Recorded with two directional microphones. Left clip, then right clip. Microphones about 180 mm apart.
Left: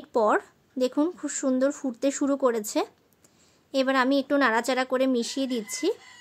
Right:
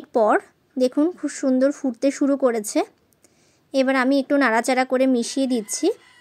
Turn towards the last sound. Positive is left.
turn(degrees=-20)  # may be behind; listen again after turning